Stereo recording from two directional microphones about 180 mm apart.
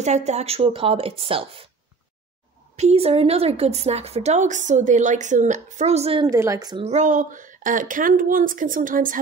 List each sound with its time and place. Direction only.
0.0 s a woman's voice: 40° right (ahead or behind)
2.7 s a woman's voice: 35° right (ahead or behind)
6.2 s speech: 20° right (ahead or behind)
6.8 s speech: 40° right (ahead or behind)